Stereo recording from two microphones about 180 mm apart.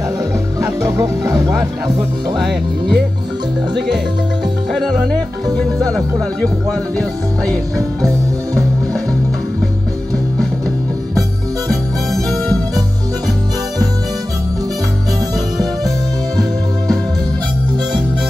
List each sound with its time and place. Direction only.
0.7 s music: 15° right (ahead or behind)
1.3 s speech: 20° right (ahead or behind)
2.3 s music: centre (ahead or behind)
5.9 s music: 5° left (ahead or behind)
12.1 s music: centre (ahead or behind)